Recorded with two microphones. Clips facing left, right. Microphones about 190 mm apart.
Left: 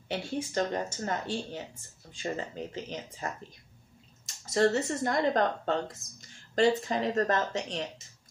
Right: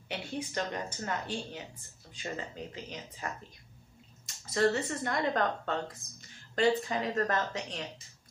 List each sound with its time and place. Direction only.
0.1 s speech: 40° left (ahead or behind)
3.2 s speech: 40° left (ahead or behind)
4.6 s speech: 30° left (ahead or behind)
5.1 s speech: 40° left (ahead or behind)